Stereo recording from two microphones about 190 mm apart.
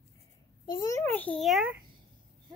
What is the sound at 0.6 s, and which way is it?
A child's voice, 20° left (ahead or behind).